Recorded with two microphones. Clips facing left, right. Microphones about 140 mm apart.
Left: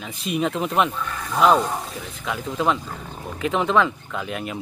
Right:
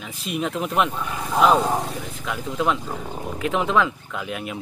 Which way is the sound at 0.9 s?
15° right (ahead or behind).